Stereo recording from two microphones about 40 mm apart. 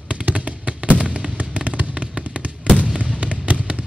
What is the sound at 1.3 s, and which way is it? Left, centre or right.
Fireworks, right.